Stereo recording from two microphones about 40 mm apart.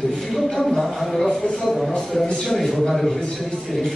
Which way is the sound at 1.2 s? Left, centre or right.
Centre.